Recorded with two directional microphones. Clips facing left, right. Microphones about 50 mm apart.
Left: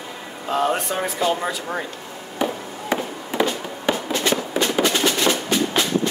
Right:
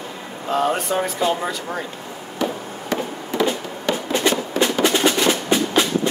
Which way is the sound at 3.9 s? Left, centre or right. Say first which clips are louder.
Left 1 dB; centre.